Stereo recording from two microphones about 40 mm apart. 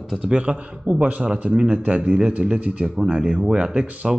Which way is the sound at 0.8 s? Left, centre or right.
Right.